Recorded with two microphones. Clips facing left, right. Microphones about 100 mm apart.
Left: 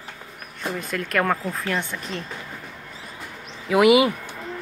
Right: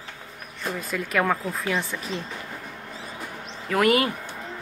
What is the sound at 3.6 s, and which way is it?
Speech, 10° left (ahead or behind).